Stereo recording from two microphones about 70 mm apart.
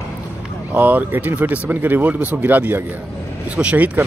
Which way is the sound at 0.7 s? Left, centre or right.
Right.